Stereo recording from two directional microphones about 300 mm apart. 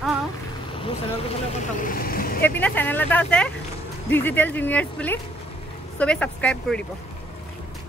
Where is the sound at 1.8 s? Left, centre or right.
Left.